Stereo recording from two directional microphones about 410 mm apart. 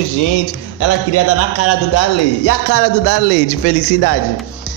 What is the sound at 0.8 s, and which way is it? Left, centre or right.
A man's voice, left.